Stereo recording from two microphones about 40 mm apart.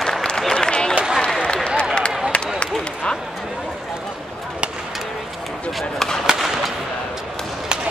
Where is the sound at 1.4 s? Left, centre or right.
Left.